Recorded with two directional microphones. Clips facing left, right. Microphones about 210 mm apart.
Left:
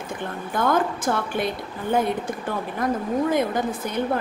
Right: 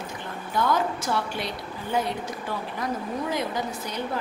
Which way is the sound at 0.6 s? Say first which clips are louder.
Left 3 dB; 50° left (ahead or behind).